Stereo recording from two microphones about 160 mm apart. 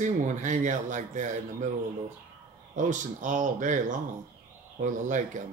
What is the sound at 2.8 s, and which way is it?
Speech, 50° right (ahead or behind).